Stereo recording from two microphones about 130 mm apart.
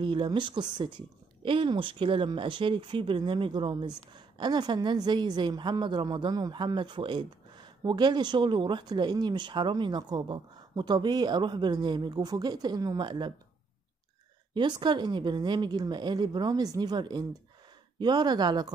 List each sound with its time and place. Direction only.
0.0 s a woman's voice: 40° right (ahead or behind)
14.5 s a woman's voice: 35° right (ahead or behind)